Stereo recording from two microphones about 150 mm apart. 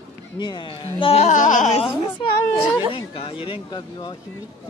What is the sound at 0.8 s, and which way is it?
Music, 40° left (ahead or behind).